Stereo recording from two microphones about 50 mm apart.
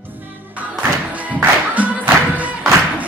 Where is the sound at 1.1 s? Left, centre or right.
Right.